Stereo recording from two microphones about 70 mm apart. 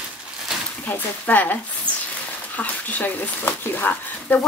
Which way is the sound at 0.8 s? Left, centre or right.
Left.